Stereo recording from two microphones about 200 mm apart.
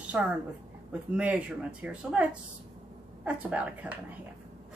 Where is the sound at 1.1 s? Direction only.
5° right (ahead or behind).